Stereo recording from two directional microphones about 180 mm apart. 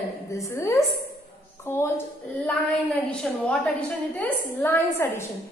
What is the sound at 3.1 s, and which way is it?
A woman's voice, 5° left (ahead or behind).